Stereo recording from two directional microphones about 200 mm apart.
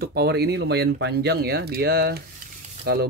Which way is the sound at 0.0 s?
55° right (ahead or behind).